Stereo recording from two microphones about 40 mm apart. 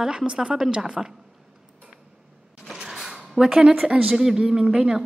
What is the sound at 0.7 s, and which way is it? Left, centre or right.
Speech, centre.